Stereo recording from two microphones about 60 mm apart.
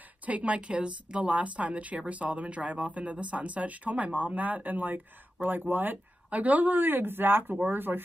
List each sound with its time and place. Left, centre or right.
0.2 s speech: right